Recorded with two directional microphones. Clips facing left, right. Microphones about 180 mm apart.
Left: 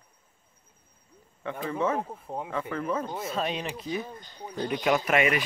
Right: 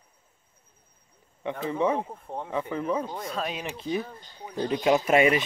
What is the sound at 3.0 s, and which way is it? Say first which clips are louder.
Speech: left 1 dB; 5° left (ahead or behind).